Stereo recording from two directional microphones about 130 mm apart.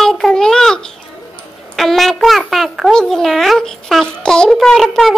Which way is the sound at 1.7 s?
Centre (ahead or behind).